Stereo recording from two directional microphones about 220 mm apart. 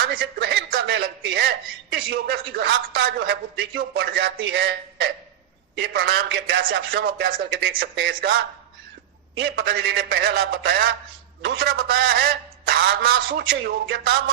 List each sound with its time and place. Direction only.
0.0 s speech: 45° right (ahead or behind)